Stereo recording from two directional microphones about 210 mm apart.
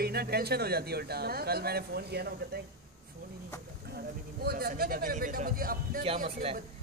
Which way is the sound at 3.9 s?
45° right (ahead or behind).